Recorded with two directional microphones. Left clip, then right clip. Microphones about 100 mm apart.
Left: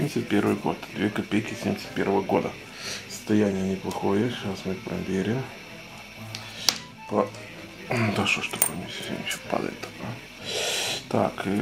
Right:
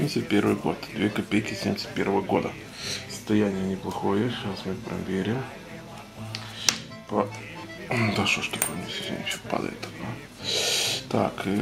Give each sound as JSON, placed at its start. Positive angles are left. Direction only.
{"t": 0.3, "sound": "speech", "side_deg": -25}
{"t": 2.0, "sound": "speech", "side_deg": 0}
{"t": 3.3, "sound": "speech", "side_deg": 10}
{"t": 6.3, "sound": "music", "side_deg": 5}
{"t": 7.9, "sound": "speech", "side_deg": -5}
{"t": 8.2, "sound": "speech", "side_deg": -25}
{"t": 9.5, "sound": "speech", "side_deg": -10}